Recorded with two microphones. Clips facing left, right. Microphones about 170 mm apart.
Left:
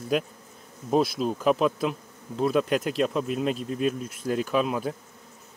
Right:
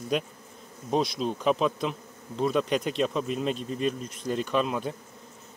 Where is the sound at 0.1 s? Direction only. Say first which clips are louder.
Left 3 dB; 5° left (ahead or behind).